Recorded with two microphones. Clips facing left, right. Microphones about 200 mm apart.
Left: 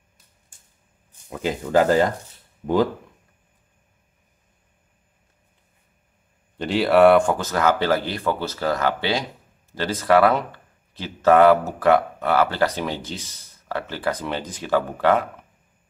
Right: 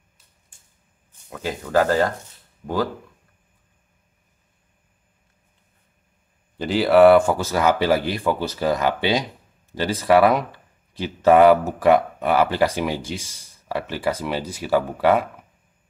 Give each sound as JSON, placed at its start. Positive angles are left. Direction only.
{"t": 1.4, "sound": "speech", "side_deg": 20}
{"t": 6.5, "sound": "speech", "side_deg": 0}